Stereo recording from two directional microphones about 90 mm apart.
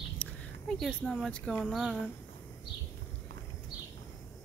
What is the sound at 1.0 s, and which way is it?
Speech, 10° left (ahead or behind).